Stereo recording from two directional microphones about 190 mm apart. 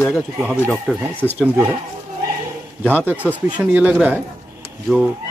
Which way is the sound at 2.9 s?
10° right (ahead or behind).